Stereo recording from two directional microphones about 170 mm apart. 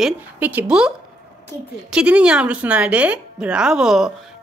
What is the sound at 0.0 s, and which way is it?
Speech, 10° right (ahead or behind).